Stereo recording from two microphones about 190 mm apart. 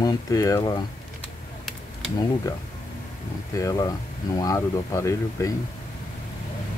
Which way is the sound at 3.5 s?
20° left (ahead or behind).